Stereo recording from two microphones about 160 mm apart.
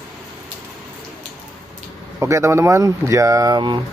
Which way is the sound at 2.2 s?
15° right (ahead or behind).